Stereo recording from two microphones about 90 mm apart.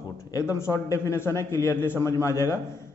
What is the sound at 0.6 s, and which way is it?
A man's voice, 30° left (ahead or behind).